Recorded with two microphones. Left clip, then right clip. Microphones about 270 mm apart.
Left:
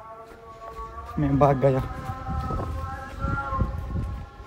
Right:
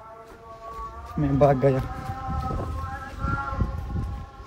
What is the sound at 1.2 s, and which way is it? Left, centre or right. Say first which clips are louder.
Speech: right 1 dB; left.